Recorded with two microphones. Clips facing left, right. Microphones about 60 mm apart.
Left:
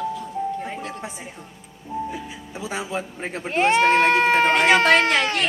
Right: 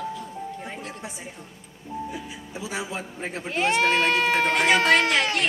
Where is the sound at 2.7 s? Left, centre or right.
Left.